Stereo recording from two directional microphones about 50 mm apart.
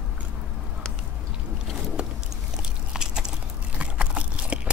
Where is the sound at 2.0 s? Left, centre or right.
Right.